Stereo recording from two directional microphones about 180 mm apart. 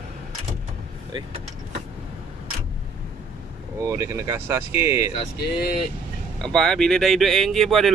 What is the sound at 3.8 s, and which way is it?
Speech, 15° right (ahead or behind).